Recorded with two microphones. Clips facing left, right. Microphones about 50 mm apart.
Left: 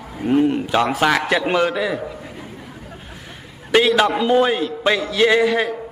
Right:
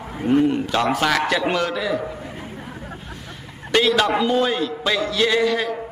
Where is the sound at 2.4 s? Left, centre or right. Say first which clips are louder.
Right 2 dB; right.